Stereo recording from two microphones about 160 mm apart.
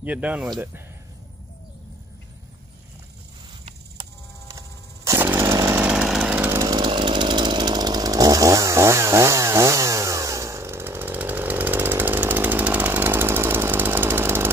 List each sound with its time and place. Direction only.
0.0 s speech: 10° right (ahead or behind)
4.5 s chainsaw: 20° right (ahead or behind)
6.6 s chainsaw: 25° right (ahead or behind)